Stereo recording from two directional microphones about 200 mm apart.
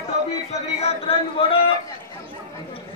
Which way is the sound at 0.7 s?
30° left (ahead or behind).